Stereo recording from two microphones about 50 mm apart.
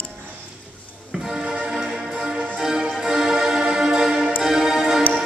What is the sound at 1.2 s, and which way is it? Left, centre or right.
Music, centre.